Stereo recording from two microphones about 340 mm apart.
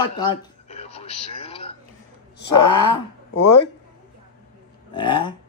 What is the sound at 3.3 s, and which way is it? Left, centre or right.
Speech, left.